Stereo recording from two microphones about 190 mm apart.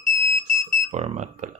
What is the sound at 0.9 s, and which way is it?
Speech, 35° right (ahead or behind).